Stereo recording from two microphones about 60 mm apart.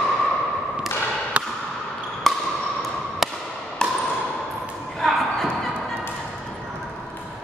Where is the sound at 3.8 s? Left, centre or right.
Centre.